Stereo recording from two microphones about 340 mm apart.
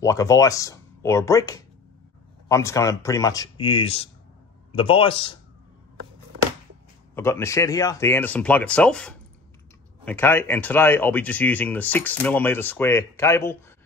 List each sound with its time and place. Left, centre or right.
0.0 s speech: centre
7.2 s speech: centre